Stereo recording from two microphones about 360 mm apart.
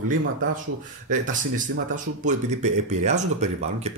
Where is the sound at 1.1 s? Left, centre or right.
Right.